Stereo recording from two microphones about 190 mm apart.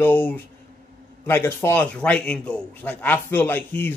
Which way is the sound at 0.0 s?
10° left (ahead or behind).